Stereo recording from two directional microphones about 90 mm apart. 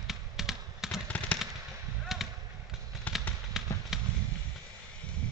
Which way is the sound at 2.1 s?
5° right (ahead or behind).